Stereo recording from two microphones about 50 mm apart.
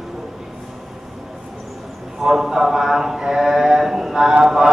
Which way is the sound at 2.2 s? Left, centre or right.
Centre.